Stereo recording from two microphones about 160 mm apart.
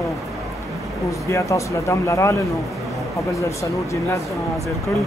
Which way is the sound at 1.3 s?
20° left (ahead or behind).